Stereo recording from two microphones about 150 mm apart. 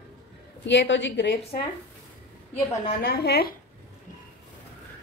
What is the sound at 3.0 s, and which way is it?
Speech, 90° left.